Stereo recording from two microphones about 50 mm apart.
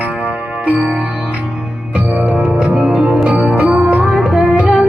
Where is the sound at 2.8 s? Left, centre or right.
Right.